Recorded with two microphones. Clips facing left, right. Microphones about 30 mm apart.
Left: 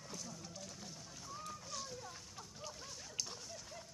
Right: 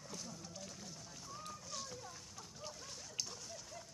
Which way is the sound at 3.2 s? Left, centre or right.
Centre.